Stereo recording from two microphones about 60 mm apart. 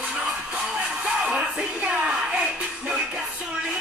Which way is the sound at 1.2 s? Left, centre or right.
Centre.